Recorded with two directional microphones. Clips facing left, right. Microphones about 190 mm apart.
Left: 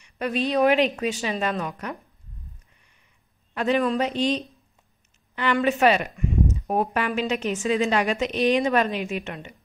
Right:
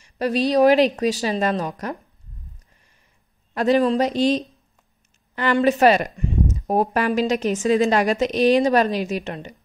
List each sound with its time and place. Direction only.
0.0 s a woman's voice: 35° right (ahead or behind)
3.5 s a woman's voice: 40° right (ahead or behind)